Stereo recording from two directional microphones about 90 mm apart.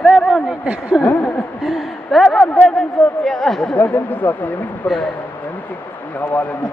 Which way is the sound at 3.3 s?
5° left (ahead or behind).